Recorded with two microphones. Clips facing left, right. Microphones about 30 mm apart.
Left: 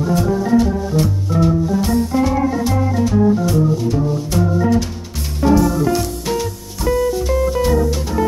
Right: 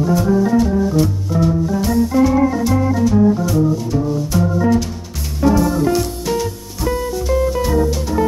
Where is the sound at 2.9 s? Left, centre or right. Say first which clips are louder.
Left 1 dB; centre.